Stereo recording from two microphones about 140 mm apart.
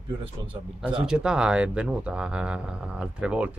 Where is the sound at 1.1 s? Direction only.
5° right (ahead or behind).